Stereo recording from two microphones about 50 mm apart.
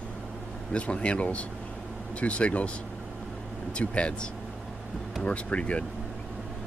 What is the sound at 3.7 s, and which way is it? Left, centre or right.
Speech, left.